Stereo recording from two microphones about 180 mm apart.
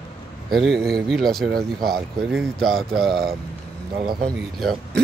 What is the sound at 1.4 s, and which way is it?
Speech, 60° right (ahead or behind).